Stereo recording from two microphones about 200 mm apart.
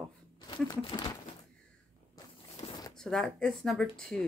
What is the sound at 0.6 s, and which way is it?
Speech, 20° left (ahead or behind).